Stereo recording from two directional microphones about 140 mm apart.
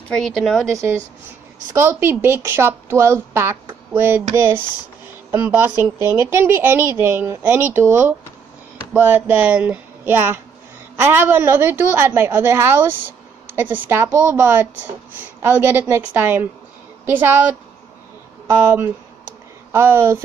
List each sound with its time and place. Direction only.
0.1 s a woman's voice: 5° left (ahead or behind)
1.7 s a woman's voice: 20° right (ahead or behind)
18.6 s a woman's voice: 15° right (ahead or behind)